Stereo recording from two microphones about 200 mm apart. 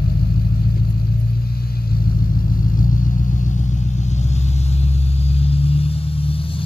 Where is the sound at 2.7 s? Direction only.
45° left (ahead or behind).